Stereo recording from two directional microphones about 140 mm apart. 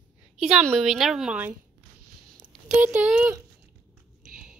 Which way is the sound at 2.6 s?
10° right (ahead or behind).